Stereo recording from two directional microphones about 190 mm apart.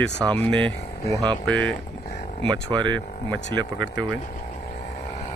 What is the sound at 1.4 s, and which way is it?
Speech, 5° left (ahead or behind).